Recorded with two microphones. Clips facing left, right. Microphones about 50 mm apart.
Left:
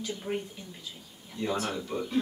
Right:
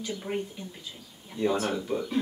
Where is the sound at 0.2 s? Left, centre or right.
Centre.